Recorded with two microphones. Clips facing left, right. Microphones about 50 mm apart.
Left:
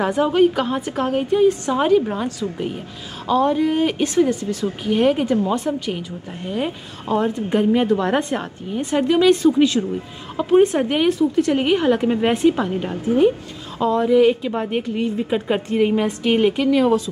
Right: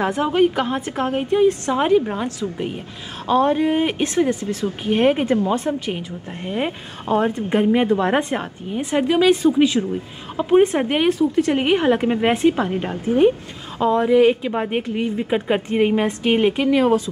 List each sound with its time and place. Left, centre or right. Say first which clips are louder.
0.2 s speech: left 2 dB; centre
3.3 s a woman's voice: right 1 dB; right